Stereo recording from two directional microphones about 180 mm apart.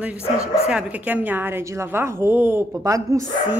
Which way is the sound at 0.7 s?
10° right (ahead or behind).